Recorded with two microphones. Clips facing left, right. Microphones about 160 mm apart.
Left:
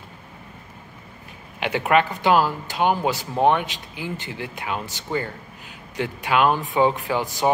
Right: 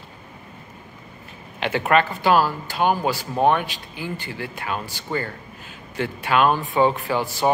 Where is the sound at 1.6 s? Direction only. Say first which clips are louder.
Even; 15° left (ahead or behind).